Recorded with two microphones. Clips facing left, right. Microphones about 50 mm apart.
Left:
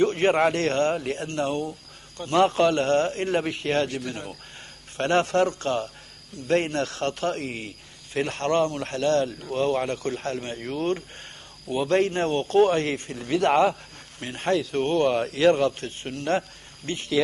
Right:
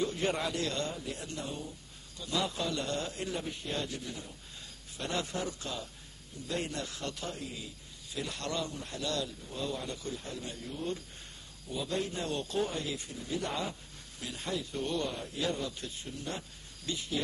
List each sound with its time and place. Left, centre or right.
0.0 s speech: left
8.7 s speech: left
14.2 s speech: left
16.8 s speech: left